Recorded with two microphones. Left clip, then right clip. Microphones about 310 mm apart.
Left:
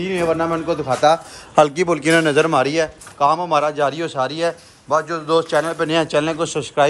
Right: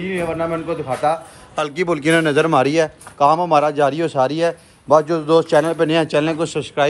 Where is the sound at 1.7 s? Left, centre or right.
Centre.